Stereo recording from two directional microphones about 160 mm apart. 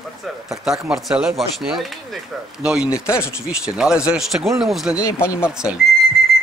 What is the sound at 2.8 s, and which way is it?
Speech, 20° left (ahead or behind).